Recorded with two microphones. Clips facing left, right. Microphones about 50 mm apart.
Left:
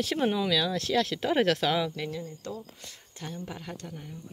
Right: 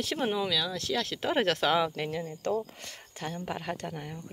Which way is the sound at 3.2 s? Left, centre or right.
Right.